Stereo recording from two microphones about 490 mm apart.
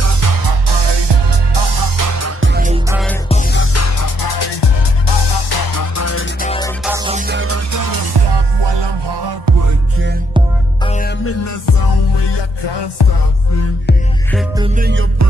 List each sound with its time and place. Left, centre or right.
0.0 s music: right
0.8 s music: right
2.5 s music: centre
3.3 s music: centre
3.7 s music: left
4.2 s music: left
6.4 s music: centre
6.8 s music: centre; by 9.6 s right
9.7 s music: right
10.9 s music: centre
11.2 s music: left
14.6 s music: centre